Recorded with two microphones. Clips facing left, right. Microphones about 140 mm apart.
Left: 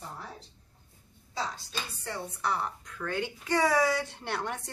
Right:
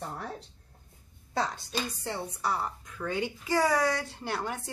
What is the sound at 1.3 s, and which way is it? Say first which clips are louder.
Speech: right 4 dB; 55° right (ahead or behind).